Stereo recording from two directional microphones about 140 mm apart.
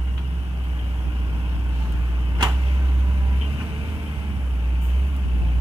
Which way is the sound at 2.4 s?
30° right (ahead or behind).